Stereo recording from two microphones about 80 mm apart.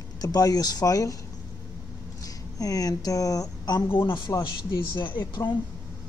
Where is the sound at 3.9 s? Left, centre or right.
Left.